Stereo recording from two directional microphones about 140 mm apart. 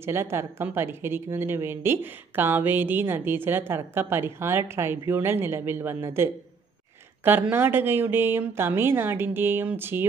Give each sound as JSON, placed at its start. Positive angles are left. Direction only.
{"t": 0.0, "sound": "a woman's voice", "side_deg": -15}